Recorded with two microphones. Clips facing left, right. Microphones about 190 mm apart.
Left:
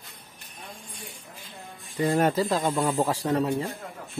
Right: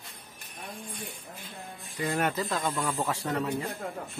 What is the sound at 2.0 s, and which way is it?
A man's voice, 30° left (ahead or behind).